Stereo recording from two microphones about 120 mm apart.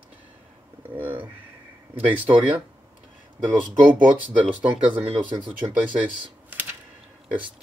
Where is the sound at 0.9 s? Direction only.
15° right (ahead or behind).